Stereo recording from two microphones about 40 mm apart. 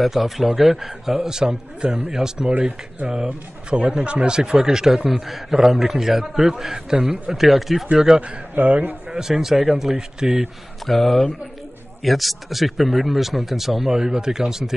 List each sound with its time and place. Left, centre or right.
0.0 s a man's voice: centre
3.3 s a man's voice: right; by 7.8 s centre
8.2 s a man's voice: right
9.2 s a man's voice: centre
10.9 s speech: centre